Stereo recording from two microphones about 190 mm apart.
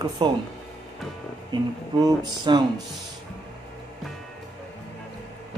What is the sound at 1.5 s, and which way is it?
Speech, 20° right (ahead or behind).